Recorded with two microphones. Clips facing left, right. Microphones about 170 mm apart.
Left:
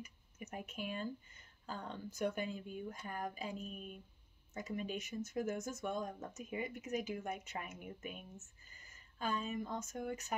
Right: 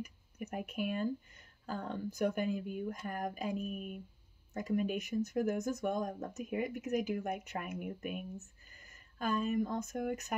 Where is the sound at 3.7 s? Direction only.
10° right (ahead or behind).